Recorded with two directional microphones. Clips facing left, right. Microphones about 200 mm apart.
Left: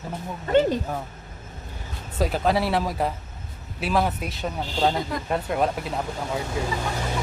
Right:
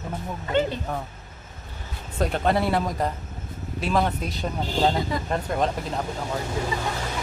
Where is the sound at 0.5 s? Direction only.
45° left (ahead or behind).